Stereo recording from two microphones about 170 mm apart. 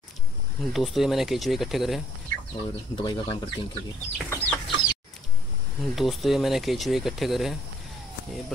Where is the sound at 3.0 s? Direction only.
25° left (ahead or behind).